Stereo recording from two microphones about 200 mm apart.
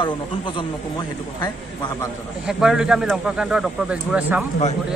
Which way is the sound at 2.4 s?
5° right (ahead or behind).